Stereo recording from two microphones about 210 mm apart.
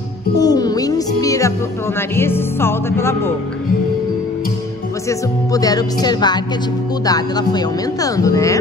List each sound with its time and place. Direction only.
0.4 s speech: 20° left (ahead or behind)
5.5 s speech: 15° left (ahead or behind)